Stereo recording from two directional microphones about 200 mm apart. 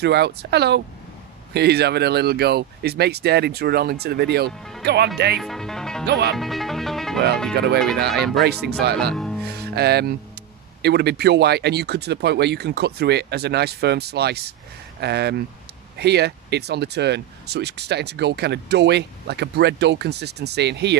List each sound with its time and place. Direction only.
0.0 s speech: 55° right (ahead or behind)
5.4 s speech: centre (ahead or behind)
6.0 s speech: 55° right (ahead or behind)
6.3 s music: centre (ahead or behind)
8.1 s speech: centre (ahead or behind)
8.5 s speech: 55° right (ahead or behind)
9.1 s music: 5° left (ahead or behind)
9.4 s music: 55° right (ahead or behind)
10.8 s speech: 55° right (ahead or behind)